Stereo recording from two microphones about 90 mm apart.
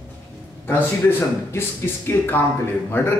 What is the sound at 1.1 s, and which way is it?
Speech, 25° left (ahead or behind).